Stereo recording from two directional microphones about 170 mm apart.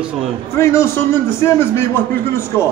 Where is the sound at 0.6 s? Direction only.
15° left (ahead or behind).